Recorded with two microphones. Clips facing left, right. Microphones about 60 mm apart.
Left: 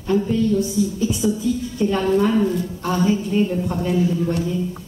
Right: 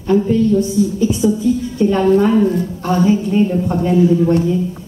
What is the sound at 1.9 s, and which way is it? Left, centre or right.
Speech, right.